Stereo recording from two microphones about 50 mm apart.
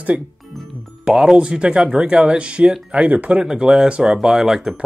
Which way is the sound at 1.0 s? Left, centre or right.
Centre.